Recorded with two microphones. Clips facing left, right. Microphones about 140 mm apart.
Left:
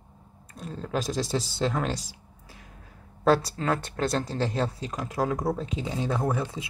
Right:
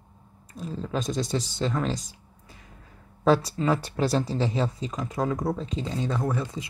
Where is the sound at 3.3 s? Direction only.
Centre (ahead or behind).